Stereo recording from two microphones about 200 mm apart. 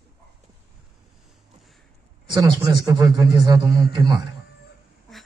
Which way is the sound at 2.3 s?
20° right (ahead or behind).